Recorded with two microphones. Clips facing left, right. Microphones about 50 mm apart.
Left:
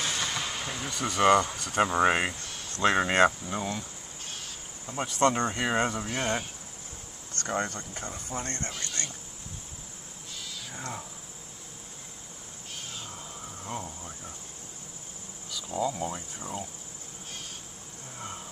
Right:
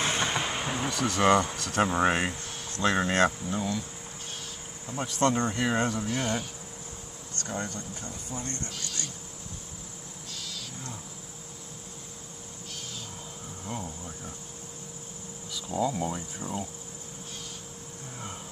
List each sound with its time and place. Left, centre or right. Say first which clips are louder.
0.0 s a sound: right 4 dB; right
0.9 s speech: left 1 dB; centre
3.5 s speech: right 2 dB; left
4.9 s speech: left 1 dB; centre
6.0 s speech: even; left
7.4 s speech: left 4 dB; left
10.3 s owl: right 1 dB; centre
13.8 s speech: right 2 dB; centre
15.5 s speech: right 1 dB; centre